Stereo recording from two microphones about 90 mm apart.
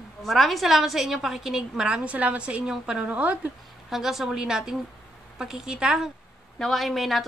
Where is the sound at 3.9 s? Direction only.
5° right (ahead or behind).